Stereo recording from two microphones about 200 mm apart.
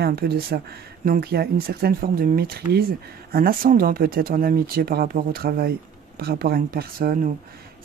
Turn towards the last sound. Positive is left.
turn(degrees=-45)  # may be behind; listen again after turning